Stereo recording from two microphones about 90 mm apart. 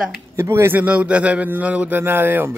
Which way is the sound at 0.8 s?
15° right (ahead or behind).